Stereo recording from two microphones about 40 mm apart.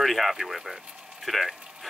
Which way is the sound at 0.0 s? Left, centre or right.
Centre.